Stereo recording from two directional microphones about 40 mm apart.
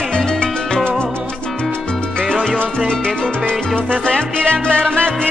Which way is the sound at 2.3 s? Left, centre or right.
Left.